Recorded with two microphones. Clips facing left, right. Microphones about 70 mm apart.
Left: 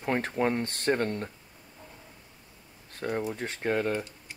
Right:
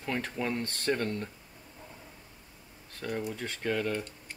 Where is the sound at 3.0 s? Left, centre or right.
Left.